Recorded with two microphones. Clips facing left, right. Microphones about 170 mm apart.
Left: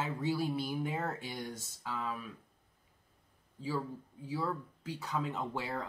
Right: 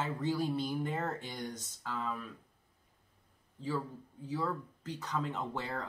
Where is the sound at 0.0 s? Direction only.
10° left (ahead or behind).